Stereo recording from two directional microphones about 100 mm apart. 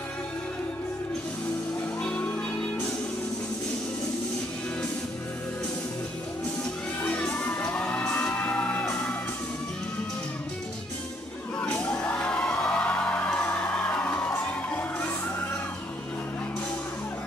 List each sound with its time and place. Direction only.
2.0 s music: 15° left (ahead or behind)
7.0 s children shouting: 10° left (ahead or behind)
7.7 s music: 10° left (ahead or behind)
11.6 s music: 10° left (ahead or behind)